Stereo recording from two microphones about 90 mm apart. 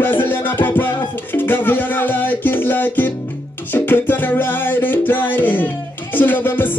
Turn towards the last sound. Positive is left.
turn(degrees=20)  # may be behind; listen again after turning